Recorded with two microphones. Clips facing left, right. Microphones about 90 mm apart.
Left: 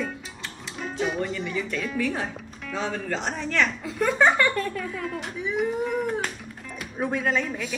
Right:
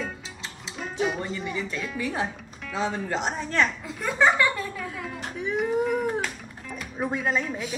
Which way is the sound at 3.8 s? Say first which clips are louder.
Left 5 dB; centre (ahead or behind).